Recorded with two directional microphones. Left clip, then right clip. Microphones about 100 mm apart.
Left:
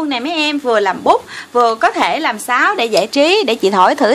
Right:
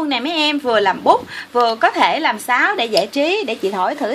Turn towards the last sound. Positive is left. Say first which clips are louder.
# left 8 dB
turn(degrees=85)